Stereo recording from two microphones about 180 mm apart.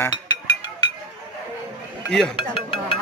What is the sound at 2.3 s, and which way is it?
Music, 30° left (ahead or behind).